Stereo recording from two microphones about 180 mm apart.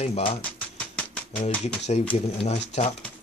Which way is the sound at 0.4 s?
5° left (ahead or behind).